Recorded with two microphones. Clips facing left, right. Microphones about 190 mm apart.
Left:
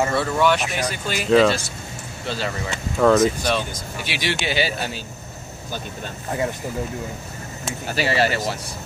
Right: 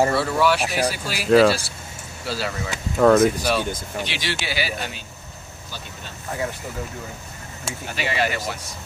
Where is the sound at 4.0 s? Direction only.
15° left (ahead or behind).